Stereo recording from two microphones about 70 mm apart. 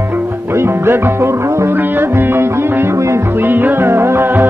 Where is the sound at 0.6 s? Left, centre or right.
Right.